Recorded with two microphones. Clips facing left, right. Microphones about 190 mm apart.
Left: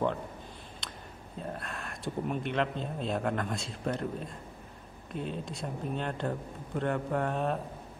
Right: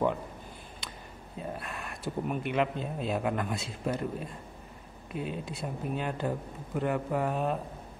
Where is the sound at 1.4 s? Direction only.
5° right (ahead or behind).